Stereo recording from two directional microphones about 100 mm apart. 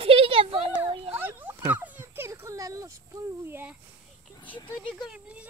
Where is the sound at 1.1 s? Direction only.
20° right (ahead or behind); by 2.9 s 35° right (ahead or behind).